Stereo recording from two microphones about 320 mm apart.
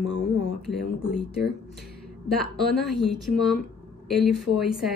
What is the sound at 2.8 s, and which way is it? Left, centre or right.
Speech, centre.